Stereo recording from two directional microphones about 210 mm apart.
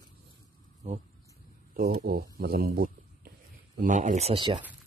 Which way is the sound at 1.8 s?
45° right (ahead or behind).